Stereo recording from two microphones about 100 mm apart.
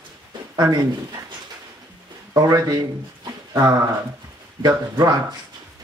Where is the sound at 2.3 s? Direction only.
35° right (ahead or behind).